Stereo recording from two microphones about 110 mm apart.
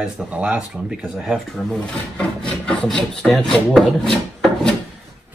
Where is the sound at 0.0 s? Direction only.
10° right (ahead or behind).